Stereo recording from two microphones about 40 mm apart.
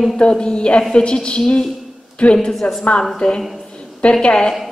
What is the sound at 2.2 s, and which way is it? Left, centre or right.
A woman's voice, left.